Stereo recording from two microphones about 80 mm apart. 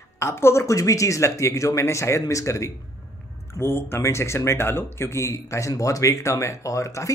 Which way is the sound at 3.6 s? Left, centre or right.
Left.